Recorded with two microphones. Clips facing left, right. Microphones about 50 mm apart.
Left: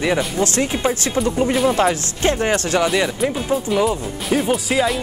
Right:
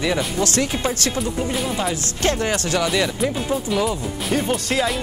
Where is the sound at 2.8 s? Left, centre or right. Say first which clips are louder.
Left 2 dB; centre.